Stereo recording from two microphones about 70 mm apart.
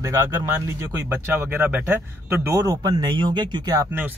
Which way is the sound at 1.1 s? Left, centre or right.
Right.